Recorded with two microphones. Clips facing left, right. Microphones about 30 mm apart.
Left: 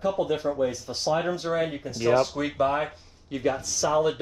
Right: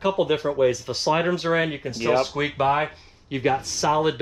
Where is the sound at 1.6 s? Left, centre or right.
Right.